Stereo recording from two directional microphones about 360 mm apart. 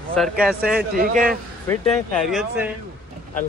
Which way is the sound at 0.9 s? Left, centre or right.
Right.